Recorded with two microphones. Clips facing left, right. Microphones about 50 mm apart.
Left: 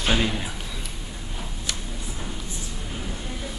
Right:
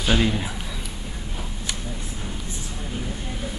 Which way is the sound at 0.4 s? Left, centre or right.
Centre.